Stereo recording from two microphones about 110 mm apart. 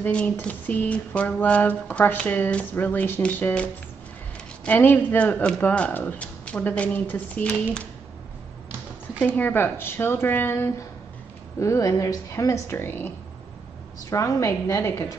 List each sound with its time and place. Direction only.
0.0 s mantra: 10° left (ahead or behind)
9.2 s speech: 20° left (ahead or behind)
14.1 s speech: 30° left (ahead or behind)